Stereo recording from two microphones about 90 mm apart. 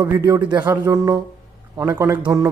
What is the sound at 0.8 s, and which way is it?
A man's voice, 35° right (ahead or behind).